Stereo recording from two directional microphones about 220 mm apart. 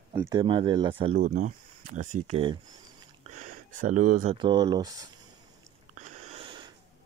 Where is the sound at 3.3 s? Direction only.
35° right (ahead or behind).